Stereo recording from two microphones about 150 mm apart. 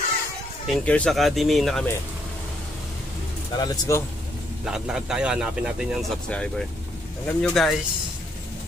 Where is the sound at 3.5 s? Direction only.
25° left (ahead or behind).